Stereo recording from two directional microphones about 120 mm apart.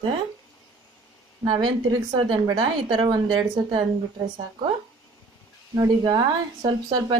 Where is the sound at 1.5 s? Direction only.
45° right (ahead or behind).